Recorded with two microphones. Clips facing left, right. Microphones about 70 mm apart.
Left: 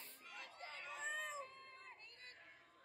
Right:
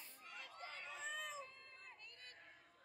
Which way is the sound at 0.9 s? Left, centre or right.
Left.